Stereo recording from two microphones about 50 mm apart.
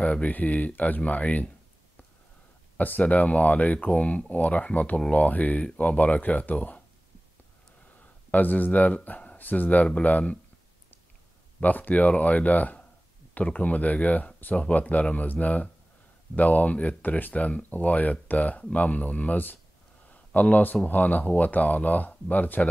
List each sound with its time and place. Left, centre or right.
0.0 s speech: left
2.8 s speech: left
8.3 s speech: left
11.6 s speech: left